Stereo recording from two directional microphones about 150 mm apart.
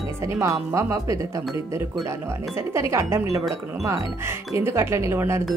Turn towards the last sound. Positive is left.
turn(degrees=-20)  # may be behind; listen again after turning